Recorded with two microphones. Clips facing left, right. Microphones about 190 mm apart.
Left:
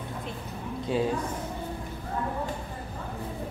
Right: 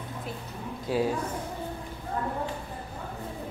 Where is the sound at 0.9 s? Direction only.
5° right (ahead or behind).